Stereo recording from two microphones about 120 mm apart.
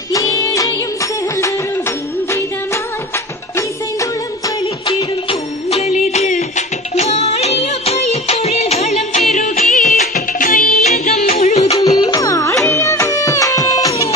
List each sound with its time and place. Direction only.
0.1 s music: 30° left (ahead or behind)
4.8 s music: 55° left (ahead or behind)
11.7 s music: 30° left (ahead or behind)